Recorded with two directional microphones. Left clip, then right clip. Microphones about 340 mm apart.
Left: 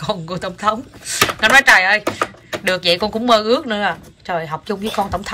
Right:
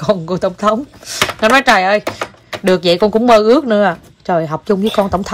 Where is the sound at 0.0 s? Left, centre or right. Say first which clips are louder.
Right 8 dB; centre.